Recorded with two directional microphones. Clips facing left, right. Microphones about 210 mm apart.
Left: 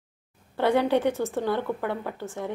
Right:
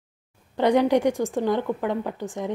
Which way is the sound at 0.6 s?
15° right (ahead or behind).